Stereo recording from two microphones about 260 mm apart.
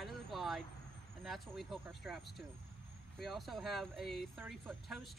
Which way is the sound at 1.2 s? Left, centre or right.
Centre.